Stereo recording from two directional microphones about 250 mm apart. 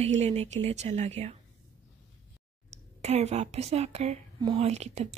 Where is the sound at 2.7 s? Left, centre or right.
Right.